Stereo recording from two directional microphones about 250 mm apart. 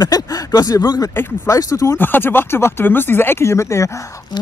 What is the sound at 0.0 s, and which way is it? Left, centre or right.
Speech, centre.